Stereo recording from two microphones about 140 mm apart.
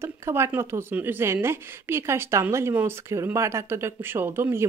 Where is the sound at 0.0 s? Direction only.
20° right (ahead or behind).